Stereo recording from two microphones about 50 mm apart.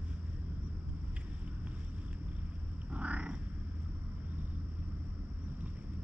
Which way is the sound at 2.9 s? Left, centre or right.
Right.